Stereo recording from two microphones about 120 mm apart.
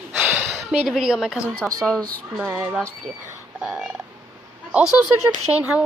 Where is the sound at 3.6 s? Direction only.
10° right (ahead or behind).